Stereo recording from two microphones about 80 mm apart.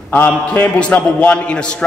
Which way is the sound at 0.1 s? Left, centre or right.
Left.